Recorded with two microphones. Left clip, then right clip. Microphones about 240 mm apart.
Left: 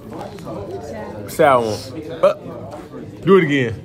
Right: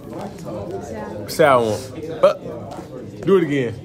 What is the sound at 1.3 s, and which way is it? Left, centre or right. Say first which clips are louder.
Speech: left 1 dB; centre.